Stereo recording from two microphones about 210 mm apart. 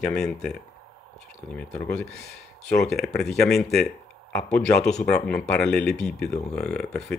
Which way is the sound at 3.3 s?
50° left (ahead or behind).